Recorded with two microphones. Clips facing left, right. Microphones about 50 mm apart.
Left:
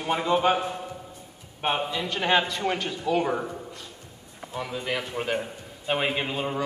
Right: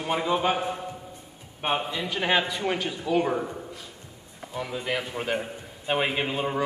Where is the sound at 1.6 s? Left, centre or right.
Centre.